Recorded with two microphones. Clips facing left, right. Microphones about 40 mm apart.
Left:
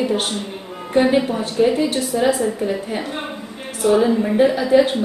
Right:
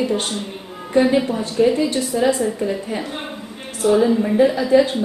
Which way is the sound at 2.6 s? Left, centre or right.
Centre.